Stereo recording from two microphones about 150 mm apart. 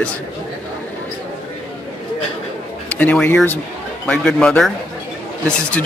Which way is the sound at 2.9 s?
10° left (ahead or behind).